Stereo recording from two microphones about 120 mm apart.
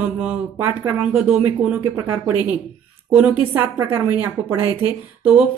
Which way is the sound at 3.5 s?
15° right (ahead or behind).